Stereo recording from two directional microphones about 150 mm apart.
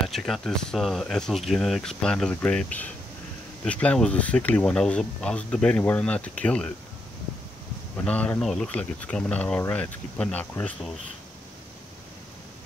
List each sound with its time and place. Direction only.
0.1 s speech: centre (ahead or behind)
8.0 s speech: 10° left (ahead or behind)